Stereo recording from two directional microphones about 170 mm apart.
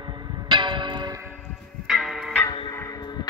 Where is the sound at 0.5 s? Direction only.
25° right (ahead or behind).